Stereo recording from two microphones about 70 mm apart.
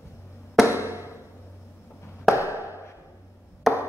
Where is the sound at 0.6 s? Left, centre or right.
Right.